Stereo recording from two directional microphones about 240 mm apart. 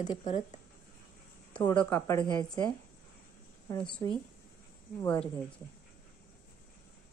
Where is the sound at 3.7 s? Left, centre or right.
Centre.